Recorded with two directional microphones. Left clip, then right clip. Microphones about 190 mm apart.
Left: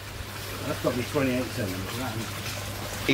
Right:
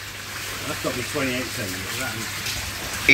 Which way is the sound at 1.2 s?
15° left (ahead or behind).